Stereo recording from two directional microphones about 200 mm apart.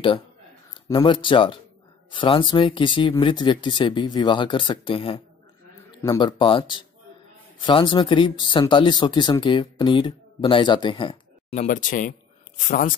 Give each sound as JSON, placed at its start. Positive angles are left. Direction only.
{"t": 0.8, "sound": "speech", "side_deg": 20}
{"t": 11.5, "sound": "speech", "side_deg": 40}